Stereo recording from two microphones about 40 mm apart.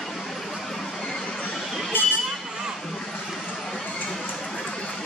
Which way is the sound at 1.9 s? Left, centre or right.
Left.